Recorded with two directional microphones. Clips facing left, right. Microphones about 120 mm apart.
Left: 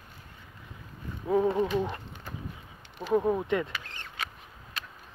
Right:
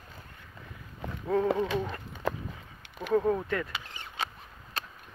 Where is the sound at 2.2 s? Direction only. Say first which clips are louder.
Right 13 dB; 90° right.